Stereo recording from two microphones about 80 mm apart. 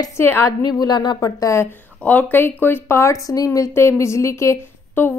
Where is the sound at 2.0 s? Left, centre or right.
Centre.